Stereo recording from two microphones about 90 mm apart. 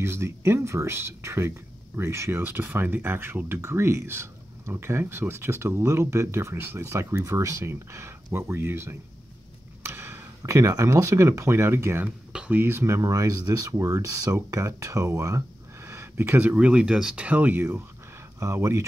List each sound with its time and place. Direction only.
0.0 s speech: 30° right (ahead or behind)
12.3 s speech: 10° right (ahead or behind)
12.5 s speech: 25° right (ahead or behind)